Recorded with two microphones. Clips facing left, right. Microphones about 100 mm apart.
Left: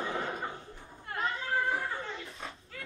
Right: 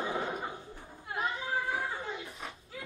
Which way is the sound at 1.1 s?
15° right (ahead or behind).